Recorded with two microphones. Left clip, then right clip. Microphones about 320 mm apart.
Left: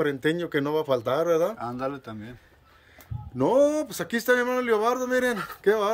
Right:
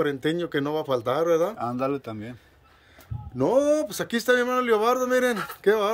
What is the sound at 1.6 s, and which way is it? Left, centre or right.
Speech, right.